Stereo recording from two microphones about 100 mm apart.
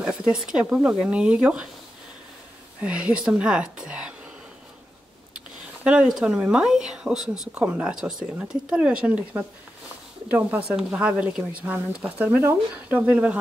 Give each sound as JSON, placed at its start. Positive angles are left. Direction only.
{"t": 0.0, "sound": "speech", "side_deg": -10}
{"t": 2.8, "sound": "speech", "side_deg": -10}
{"t": 5.9, "sound": "speech", "side_deg": -5}